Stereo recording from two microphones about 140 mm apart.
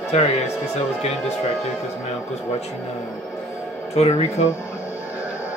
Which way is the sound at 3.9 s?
50° left (ahead or behind).